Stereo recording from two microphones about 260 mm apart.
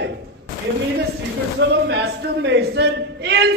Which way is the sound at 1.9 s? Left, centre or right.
Right.